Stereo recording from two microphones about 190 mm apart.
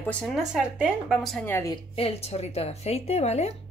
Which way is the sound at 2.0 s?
30° left (ahead or behind).